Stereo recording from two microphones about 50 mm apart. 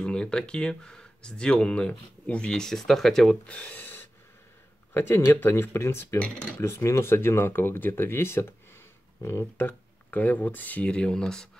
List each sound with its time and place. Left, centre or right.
0.0 s speech: centre
3.4 s speech: left
4.9 s speech: left
6.1 s speech: left
6.6 s speech: left
9.7 s speech: left
10.9 s speech: centre